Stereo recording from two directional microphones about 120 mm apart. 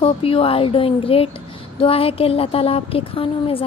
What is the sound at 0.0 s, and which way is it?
A woman's voice, 50° left (ahead or behind).